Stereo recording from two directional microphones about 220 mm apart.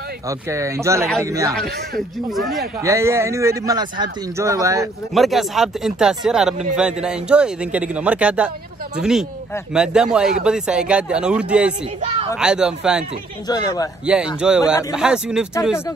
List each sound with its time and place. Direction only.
0.3 s speech: 15° right (ahead or behind)
1.5 s a man's voice: centre (ahead or behind)
2.8 s speech: 15° right (ahead or behind)
5.1 s a man's voice: centre (ahead or behind)
12.0 s a sound: 25° right (ahead or behind)
12.4 s a man's voice: 5° right (ahead or behind)
13.5 s a man's voice: 15° left (ahead or behind)
14.0 s a man's voice: 5° right (ahead or behind)
14.6 s a man's voice: 15° left (ahead or behind)
15.0 s a man's voice: 5° right (ahead or behind)